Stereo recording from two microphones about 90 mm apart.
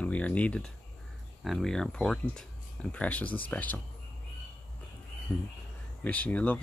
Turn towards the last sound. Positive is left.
turn(degrees=15)  # may be behind; listen again after turning